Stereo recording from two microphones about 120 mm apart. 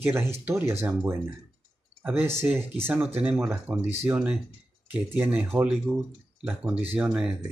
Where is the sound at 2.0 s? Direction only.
15° right (ahead or behind).